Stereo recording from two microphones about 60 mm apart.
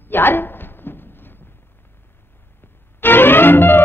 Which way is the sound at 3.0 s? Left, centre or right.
Left.